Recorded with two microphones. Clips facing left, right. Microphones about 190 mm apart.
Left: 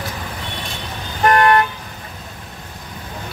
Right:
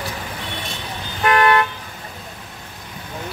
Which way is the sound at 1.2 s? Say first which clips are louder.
Left 2 dB; 40° left (ahead or behind).